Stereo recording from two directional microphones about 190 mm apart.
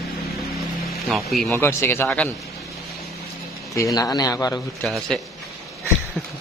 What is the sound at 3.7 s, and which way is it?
A man's voice, 20° left (ahead or behind).